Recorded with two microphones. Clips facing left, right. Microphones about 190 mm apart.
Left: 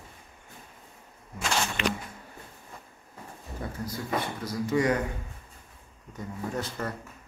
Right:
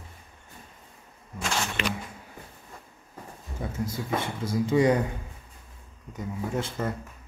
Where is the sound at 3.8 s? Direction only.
25° right (ahead or behind).